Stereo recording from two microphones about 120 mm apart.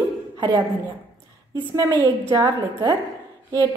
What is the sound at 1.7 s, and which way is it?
Speech, 30° right (ahead or behind).